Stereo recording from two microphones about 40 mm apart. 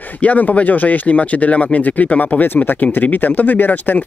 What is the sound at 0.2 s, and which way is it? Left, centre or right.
Speech, left.